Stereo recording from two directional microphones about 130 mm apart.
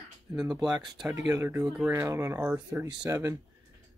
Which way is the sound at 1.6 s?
Centre (ahead or behind).